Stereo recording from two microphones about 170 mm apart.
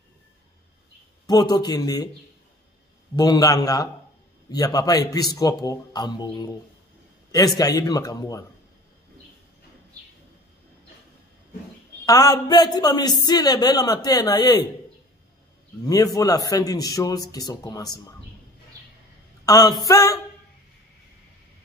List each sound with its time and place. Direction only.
1.2 s a man's voice: 25° left (ahead or behind)
3.2 s a man's voice: 20° left (ahead or behind)
12.1 s a man's voice: 20° left (ahead or behind)
15.8 s a man's voice: 20° left (ahead or behind)
19.4 s a sound: 20° left (ahead or behind)
19.8 s a man's voice: 20° left (ahead or behind)